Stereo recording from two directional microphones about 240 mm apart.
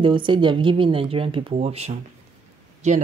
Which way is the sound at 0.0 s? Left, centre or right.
Centre.